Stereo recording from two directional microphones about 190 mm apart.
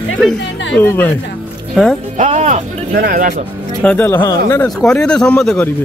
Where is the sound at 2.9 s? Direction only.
45° right (ahead or behind).